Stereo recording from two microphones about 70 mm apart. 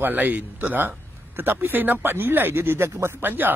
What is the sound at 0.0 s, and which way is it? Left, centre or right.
A man's voice, right.